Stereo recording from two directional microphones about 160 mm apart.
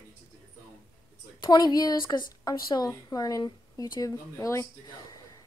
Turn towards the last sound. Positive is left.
turn(degrees=20)  # may be behind; listen again after turning